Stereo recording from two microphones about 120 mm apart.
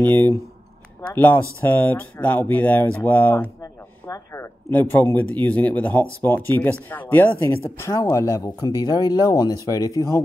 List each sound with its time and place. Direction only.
0.0 s speech: 15° left (ahead or behind)